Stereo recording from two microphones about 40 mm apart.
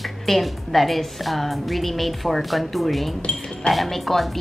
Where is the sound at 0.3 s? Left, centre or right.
Centre.